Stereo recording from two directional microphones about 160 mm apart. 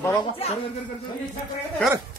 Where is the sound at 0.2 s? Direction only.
40° left (ahead or behind).